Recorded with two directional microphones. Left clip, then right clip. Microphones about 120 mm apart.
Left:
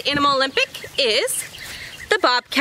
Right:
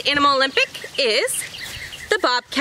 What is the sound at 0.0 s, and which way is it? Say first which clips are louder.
A woman's voice: right 1 dB; 5° left (ahead or behind).